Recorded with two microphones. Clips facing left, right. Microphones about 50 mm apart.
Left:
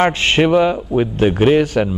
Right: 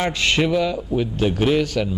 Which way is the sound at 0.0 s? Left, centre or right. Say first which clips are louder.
Left 6 dB; left.